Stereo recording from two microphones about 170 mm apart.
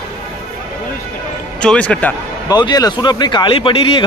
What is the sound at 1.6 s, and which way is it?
Speech, 5° left (ahead or behind).